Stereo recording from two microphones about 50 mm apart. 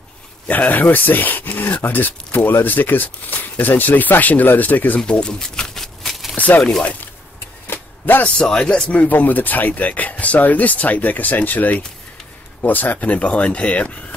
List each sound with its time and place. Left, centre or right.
0.5 s speech: left
5.0 s a sound: centre
6.3 s a sound: left
7.6 s vehicle: left
8.2 s a man's voice: centre
8.9 s speech: left